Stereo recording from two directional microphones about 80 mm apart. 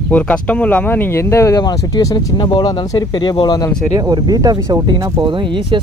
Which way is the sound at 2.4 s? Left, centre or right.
Left.